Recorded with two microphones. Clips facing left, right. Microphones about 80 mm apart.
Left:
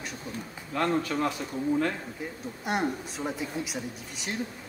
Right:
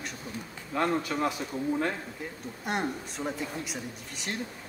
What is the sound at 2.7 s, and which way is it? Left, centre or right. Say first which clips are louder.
Speech: left 2 dB; centre.